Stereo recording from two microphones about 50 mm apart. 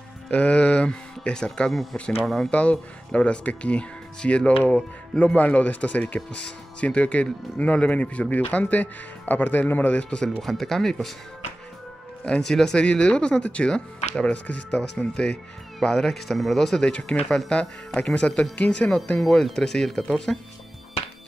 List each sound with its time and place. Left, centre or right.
0.3 s speech: left
1.7 s speech: centre
2.5 s speech: left
5.2 s speech: left
10.0 s speech: centre
10.4 s speech: centre
12.4 s speech: centre
14.3 s speech: left
15.8 s speech: centre
18.0 s speech: left
19.2 s speech: centre